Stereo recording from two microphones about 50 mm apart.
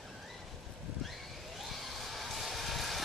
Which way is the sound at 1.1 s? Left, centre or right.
Centre.